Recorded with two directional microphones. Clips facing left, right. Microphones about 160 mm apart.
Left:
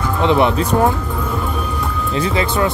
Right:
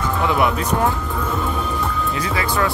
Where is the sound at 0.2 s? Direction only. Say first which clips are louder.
Left 6 dB; 25° left (ahead or behind).